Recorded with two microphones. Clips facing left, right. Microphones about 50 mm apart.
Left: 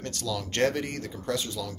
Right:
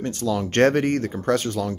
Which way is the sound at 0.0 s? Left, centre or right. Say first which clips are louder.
Right 8 dB; right.